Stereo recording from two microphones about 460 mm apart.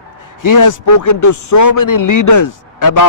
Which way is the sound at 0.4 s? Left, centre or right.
Left.